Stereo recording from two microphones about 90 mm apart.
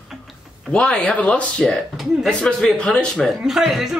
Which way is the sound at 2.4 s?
10° left (ahead or behind).